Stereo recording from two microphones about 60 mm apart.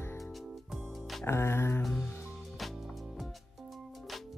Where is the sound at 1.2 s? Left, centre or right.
Left.